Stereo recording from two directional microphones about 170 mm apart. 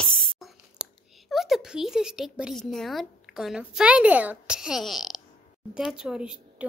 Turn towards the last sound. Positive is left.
turn(degrees=-5)  # may be behind; listen again after turning